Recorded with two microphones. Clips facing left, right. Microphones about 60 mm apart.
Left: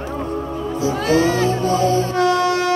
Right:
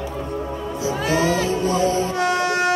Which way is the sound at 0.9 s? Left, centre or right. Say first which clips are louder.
Left 3 dB; centre.